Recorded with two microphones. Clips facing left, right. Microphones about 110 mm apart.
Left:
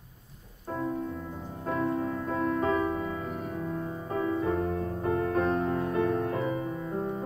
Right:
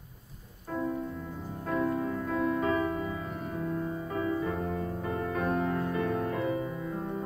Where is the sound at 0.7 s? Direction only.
5° left (ahead or behind).